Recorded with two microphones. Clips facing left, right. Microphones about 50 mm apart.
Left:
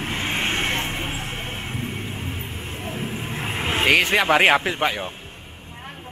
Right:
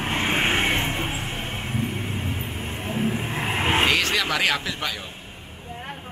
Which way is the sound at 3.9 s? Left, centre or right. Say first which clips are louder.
Left 4 dB; centre.